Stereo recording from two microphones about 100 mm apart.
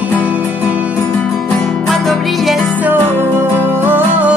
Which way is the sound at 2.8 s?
20° right (ahead or behind).